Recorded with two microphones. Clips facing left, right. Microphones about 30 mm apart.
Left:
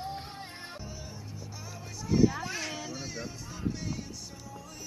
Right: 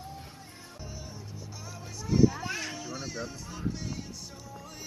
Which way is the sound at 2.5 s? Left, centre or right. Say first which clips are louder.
Even; centre.